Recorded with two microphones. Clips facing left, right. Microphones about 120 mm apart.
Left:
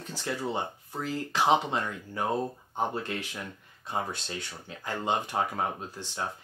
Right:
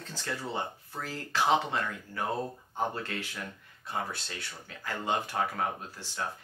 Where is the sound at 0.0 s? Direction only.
15° left (ahead or behind).